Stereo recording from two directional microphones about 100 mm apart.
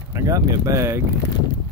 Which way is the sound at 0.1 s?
30° right (ahead or behind).